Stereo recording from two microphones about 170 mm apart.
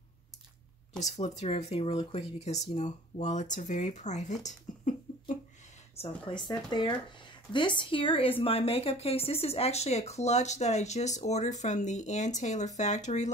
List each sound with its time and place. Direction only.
0.9 s a woman's voice: 40° left (ahead or behind)
5.9 s a woman's voice: 30° left (ahead or behind); by 13.3 s 45° left (ahead or behind)